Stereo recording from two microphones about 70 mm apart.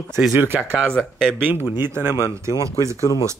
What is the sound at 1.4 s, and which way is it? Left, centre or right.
Speech, right.